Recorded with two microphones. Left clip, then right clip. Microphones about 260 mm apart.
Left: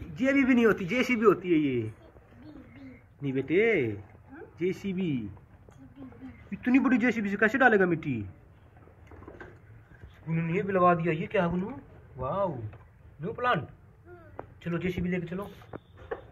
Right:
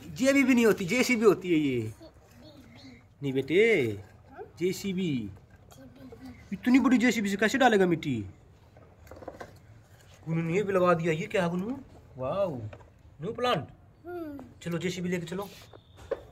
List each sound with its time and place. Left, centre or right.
0.1 s speech: centre
2.7 s bird: centre
4.7 s speech: centre
6.5 s speech: centre
9.1 s a sound: right
10.2 s speech: centre
14.6 s speech: centre